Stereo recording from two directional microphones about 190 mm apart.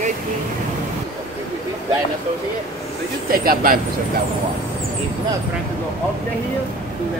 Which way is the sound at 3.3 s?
50° right (ahead or behind).